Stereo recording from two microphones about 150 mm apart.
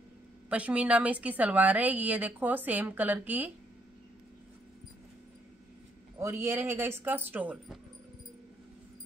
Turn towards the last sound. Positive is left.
turn(degrees=-10)  # may be behind; listen again after turning